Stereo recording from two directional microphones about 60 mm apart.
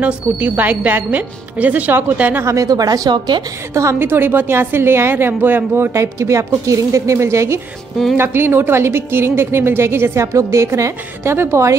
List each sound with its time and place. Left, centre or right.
0.0 s speech: right
2.4 s speech: right
4.0 s a woman's voice: right
5.9 s a woman's voice: right
8.2 s a woman's voice: right